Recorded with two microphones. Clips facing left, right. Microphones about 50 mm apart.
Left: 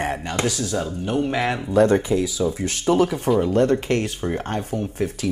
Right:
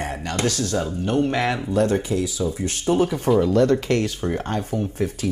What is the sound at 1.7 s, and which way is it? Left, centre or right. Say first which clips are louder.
Speech: left 6 dB; left.